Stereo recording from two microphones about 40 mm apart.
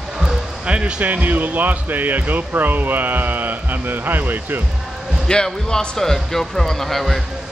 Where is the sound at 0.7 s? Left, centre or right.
Right.